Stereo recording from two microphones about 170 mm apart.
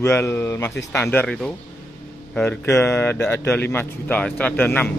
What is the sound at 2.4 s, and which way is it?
Speech, 15° left (ahead or behind).